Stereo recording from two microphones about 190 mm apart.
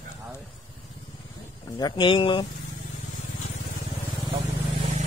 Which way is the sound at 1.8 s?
25° left (ahead or behind).